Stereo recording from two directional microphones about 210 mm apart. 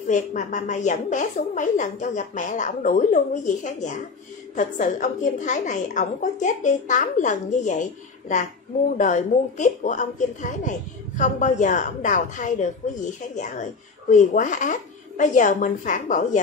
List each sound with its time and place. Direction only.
0.1 s a woman's voice: 35° left (ahead or behind)
8.9 s a woman's voice: 35° left (ahead or behind)